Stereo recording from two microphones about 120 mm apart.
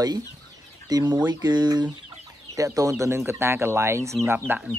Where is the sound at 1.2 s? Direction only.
35° right (ahead or behind).